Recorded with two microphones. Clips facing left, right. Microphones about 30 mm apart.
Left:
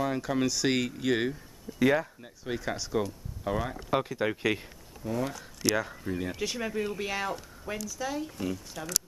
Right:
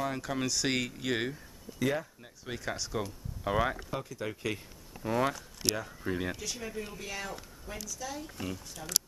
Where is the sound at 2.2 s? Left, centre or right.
Centre.